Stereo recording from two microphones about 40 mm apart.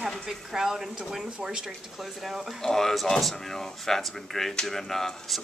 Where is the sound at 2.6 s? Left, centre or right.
Centre.